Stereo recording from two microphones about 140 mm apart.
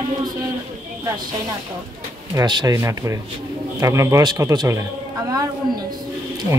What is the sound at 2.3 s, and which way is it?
Speech, 30° right (ahead or behind).